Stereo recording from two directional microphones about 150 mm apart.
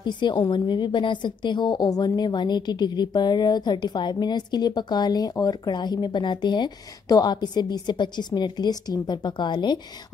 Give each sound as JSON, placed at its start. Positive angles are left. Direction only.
{"t": 0.0, "sound": "a woman's voice", "side_deg": 30}